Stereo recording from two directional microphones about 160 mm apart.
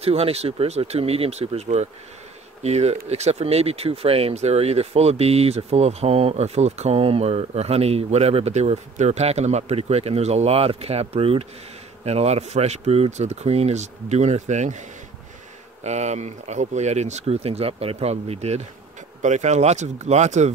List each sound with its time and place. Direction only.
0.0 s speech: 40° right (ahead or behind)
15.8 s speech: 45° right (ahead or behind)